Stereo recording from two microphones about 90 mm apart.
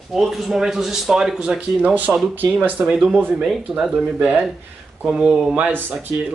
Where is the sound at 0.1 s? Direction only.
Centre (ahead or behind); by 2.1 s 15° right (ahead or behind).